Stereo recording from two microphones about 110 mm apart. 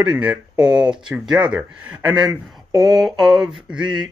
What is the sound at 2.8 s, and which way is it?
Mantra, centre (ahead or behind).